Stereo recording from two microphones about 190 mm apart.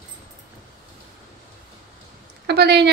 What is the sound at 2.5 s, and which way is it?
Speech, 60° right (ahead or behind).